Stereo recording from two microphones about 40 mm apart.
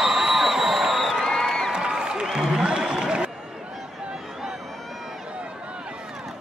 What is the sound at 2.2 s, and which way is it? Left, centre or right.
Music, centre.